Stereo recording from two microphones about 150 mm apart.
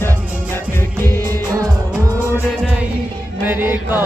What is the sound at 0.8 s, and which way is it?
Music, 15° left (ahead or behind).